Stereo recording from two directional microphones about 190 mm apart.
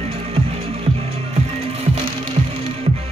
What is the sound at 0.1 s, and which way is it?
Music, 30° right (ahead or behind).